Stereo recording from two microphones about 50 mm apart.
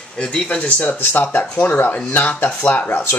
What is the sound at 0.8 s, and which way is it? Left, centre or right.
Speech, left.